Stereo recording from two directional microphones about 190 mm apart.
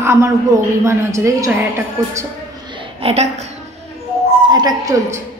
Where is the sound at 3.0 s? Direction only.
30° right (ahead or behind).